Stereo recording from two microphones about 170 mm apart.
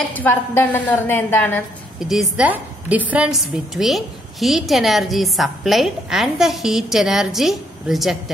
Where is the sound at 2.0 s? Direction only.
Centre (ahead or behind).